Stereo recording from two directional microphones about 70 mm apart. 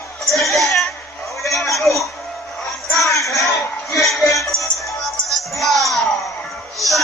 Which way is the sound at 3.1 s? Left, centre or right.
Left.